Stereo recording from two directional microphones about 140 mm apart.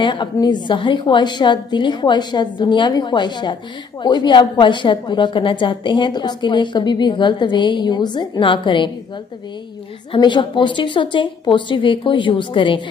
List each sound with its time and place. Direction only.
0.0 s a woman's voice: 35° left (ahead or behind)
10.1 s a woman's voice: 35° left (ahead or behind)